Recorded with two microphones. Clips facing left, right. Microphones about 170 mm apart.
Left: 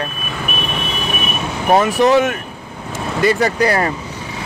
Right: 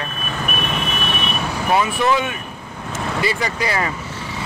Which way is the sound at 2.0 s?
40° left (ahead or behind).